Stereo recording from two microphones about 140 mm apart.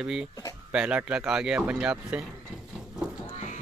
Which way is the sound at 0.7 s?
5° right (ahead or behind).